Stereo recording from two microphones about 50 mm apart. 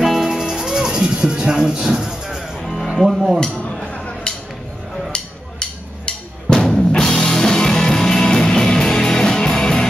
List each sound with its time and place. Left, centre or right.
0.0 s music: centre
2.6 s music: centre
3.1 s speech: centre
3.9 s a sound: left
5.1 s music: centre